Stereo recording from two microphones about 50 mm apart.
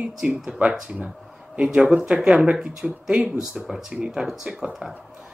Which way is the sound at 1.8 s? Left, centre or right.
Centre.